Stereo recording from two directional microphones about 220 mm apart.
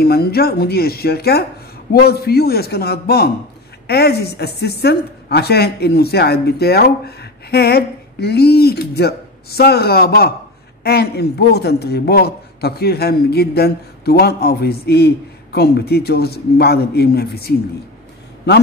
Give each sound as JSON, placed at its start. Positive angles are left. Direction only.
{"t": 0.0, "sound": "speech", "side_deg": 45}